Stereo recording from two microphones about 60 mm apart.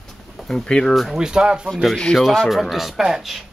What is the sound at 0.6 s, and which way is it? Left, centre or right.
Speech, centre.